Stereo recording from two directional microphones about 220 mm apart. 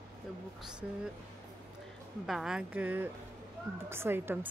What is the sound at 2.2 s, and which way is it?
A woman's voice, centre (ahead or behind).